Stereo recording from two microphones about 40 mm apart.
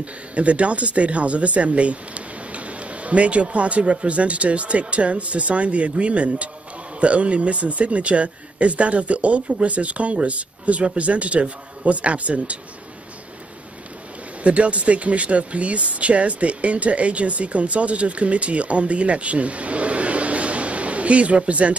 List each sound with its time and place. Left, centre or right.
0.0 s speech: right
14.4 s speech: right